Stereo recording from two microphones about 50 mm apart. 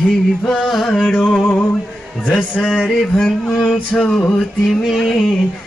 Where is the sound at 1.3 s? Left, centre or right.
Left.